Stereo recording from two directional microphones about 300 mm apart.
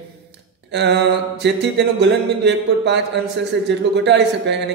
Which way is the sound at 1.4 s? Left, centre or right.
Right.